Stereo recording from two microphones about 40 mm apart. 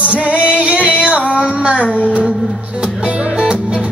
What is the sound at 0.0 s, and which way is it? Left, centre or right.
Music, right.